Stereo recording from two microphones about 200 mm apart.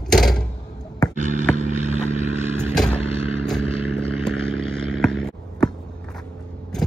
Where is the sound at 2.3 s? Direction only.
10° right (ahead or behind).